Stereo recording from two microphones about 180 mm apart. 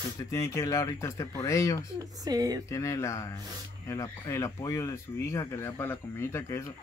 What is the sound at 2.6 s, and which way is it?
Speech, 15° left (ahead or behind).